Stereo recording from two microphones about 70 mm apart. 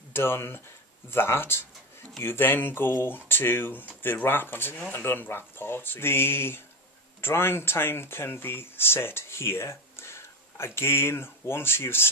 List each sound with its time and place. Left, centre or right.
0.1 s speech: left